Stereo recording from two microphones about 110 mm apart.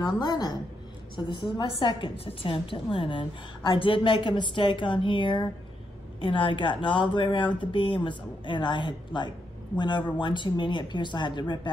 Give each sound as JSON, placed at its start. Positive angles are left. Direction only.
{"t": 0.0, "sound": "a woman's voice", "side_deg": 40}
{"t": 1.1, "sound": "a woman's voice", "side_deg": 50}